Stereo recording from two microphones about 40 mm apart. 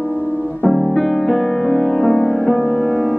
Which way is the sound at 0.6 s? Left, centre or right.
Centre.